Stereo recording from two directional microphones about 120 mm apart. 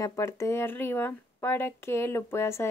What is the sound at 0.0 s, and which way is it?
Speech, 25° left (ahead or behind).